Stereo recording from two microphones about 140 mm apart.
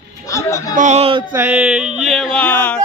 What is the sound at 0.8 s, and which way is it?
Speech, 50° right (ahead or behind).